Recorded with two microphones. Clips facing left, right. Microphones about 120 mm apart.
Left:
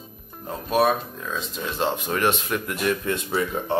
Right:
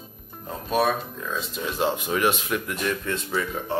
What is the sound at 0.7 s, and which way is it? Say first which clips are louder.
Speech: left 2 dB; centre (ahead or behind).